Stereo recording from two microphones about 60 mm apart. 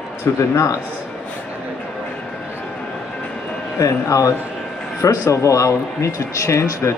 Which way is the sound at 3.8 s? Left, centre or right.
Left.